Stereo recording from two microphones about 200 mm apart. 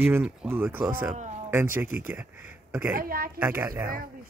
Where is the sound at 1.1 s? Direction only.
35° right (ahead or behind).